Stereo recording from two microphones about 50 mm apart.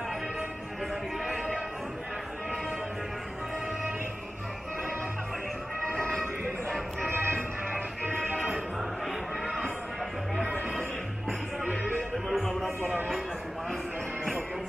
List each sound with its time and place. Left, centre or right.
5.9 s music: centre
7.1 s music: right
10.3 s music: centre